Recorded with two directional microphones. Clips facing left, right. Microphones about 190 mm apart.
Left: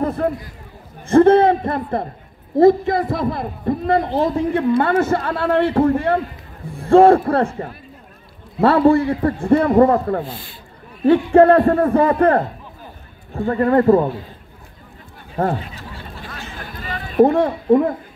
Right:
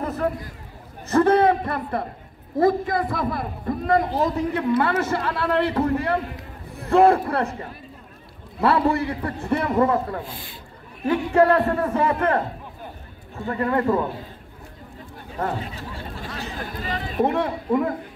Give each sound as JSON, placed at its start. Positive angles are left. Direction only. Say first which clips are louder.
{"t": 0.0, "sound": "run", "louder": "left 5 dB", "side_deg": 35}
{"t": 1.0, "sound": "a man's voice", "louder": "left 6 dB", "side_deg": 25}
{"t": 11.6, "sound": "a man's voice", "louder": "left 7 dB", "side_deg": 50}
{"t": 11.9, "sound": "a man's voice", "louder": "left 7 dB", "side_deg": 35}
{"t": 13.5, "sound": "a man's voice", "louder": "left 8 dB", "side_deg": 40}
{"t": 17.2, "sound": "a man's voice", "louder": "left 9 dB", "side_deg": 30}